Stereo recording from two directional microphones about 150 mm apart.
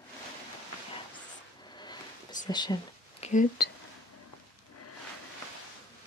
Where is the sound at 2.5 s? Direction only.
30° left (ahead or behind).